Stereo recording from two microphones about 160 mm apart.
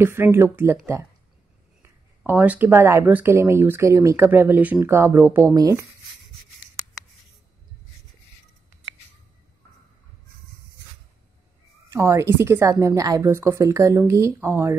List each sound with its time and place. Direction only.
0.0 s speech: 15° right (ahead or behind)
1.8 s speech: 10° right (ahead or behind)
11.9 s speech: 20° right (ahead or behind)